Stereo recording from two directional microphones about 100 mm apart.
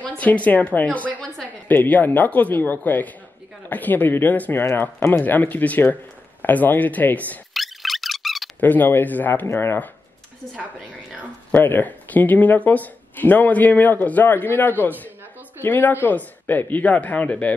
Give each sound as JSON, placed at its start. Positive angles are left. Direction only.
{"t": 0.2, "sound": "a woman's voice", "side_deg": 15}
{"t": 7.5, "sound": "a sound", "side_deg": 0}
{"t": 8.5, "sound": "speech", "side_deg": 20}
{"t": 11.5, "sound": "speech", "side_deg": 20}